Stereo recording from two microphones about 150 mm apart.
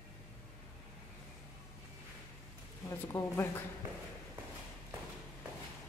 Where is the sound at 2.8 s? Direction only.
20° left (ahead or behind).